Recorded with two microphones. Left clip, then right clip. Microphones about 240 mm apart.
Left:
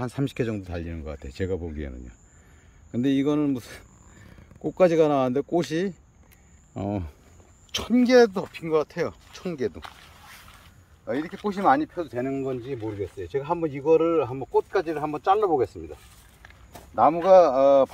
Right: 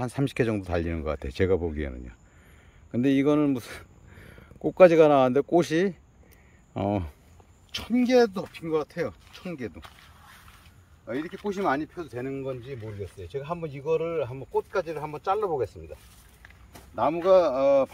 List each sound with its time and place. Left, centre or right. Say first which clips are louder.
0.0 s speech: right 1 dB; centre
7.7 s speech: left 4 dB; centre
10.1 s a sound: left 4 dB; left
11.1 s speech: left 3 dB; left
16.9 s speech: left 4 dB; left